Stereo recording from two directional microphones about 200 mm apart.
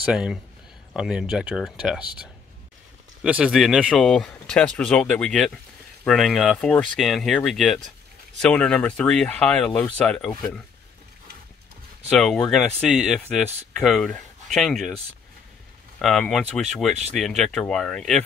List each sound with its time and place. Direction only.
0.0 s speech: 5° right (ahead or behind)
3.3 s speech: 5° right (ahead or behind)
12.1 s speech: centre (ahead or behind)
16.0 s speech: centre (ahead or behind)